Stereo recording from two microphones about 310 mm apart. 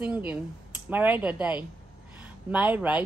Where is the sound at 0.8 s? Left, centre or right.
Centre.